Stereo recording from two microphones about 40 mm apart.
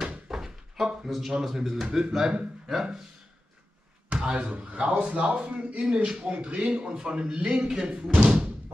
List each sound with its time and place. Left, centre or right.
0.3 s a sound: centre
1.0 s speech: centre
1.9 s speech: right
2.7 s speech: centre
4.1 s speech: right
8.1 s music: right